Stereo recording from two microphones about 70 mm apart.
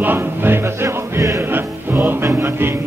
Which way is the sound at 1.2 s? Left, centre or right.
Right.